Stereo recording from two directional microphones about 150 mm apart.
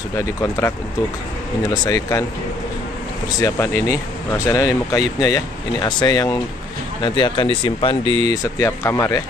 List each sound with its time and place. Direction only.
0.4 s speech: 20° left (ahead or behind)
3.3 s speech: 20° left (ahead or behind)
8.0 s speech: 35° right (ahead or behind)
8.3 s speech: 20° left (ahead or behind)